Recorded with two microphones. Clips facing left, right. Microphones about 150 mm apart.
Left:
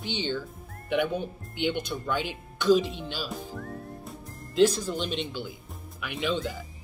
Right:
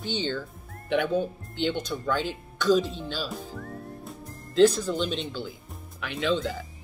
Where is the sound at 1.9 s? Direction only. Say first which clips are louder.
Right 2 dB; 10° left (ahead or behind).